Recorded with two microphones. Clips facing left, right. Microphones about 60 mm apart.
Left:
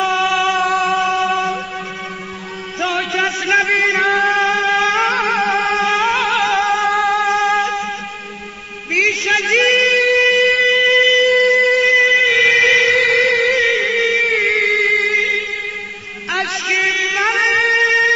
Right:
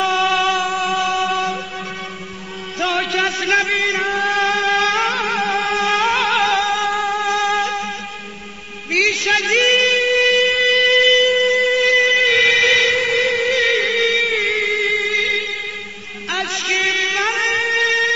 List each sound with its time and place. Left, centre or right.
0.0 s a sound: centre
0.7 s music: centre
2.8 s music: centre
3.7 s chant: left
4.0 s music: centre
8.9 s music: centre
9.3 s a sound: centre
10.0 s music: centre
12.9 s music: left
13.5 s music: centre
14.5 s music: left
15.1 s music: centre
16.7 s a sound: centre
17.4 s music: centre